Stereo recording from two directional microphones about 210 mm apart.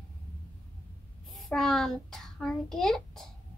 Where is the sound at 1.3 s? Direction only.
Centre (ahead or behind).